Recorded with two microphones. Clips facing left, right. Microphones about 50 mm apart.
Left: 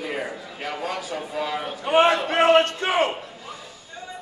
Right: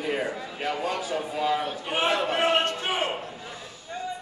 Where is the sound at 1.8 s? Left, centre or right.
Left.